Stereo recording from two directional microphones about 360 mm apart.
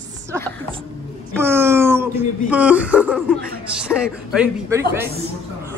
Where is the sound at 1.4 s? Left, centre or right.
Centre.